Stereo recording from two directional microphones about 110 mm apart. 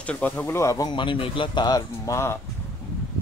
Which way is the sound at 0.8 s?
50° left (ahead or behind).